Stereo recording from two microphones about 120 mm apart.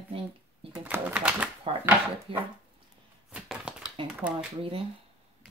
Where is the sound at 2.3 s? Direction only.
50° right (ahead or behind).